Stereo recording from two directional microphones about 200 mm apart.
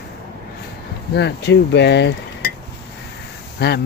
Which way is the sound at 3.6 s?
55° left (ahead or behind).